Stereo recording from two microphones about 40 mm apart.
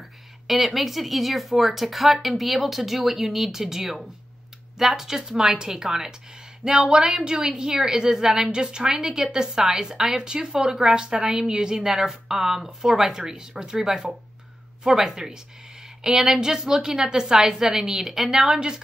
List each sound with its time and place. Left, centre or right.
0.5 s a woman's voice: centre